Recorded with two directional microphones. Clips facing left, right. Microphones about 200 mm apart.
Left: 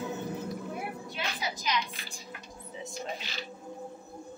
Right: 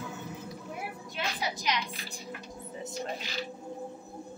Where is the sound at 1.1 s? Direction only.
65° right (ahead or behind).